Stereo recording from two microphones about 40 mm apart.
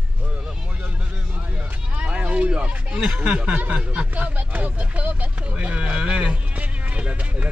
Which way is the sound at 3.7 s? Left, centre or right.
Right.